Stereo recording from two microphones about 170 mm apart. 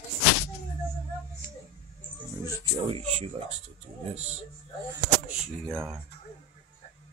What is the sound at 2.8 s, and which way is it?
Speech, 35° right (ahead or behind).